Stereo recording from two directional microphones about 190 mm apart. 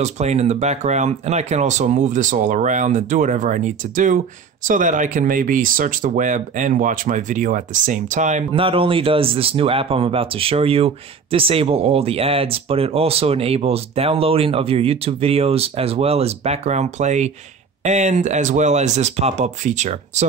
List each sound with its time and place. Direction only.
0.0 s speech: 35° right (ahead or behind)